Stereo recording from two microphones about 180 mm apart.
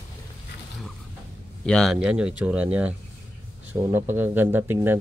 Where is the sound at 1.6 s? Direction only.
5° left (ahead or behind); by 5.0 s 10° right (ahead or behind).